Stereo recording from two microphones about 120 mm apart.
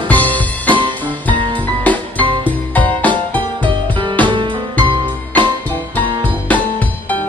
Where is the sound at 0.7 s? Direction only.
40° right (ahead or behind).